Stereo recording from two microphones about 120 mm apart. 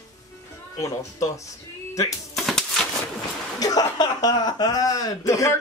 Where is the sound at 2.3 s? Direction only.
Centre (ahead or behind).